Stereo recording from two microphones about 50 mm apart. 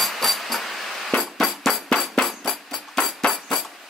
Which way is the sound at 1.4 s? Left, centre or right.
Centre.